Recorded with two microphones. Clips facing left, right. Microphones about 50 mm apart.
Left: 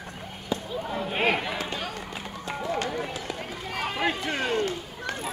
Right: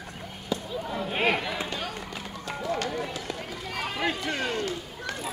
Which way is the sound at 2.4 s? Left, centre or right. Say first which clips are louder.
Left 1 dB; centre.